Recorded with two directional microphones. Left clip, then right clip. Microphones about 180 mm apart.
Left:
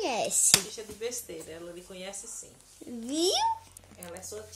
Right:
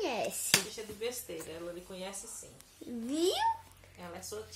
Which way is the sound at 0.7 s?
Centre (ahead or behind).